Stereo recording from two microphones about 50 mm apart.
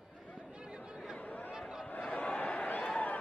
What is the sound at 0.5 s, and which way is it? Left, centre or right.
Chatter, centre.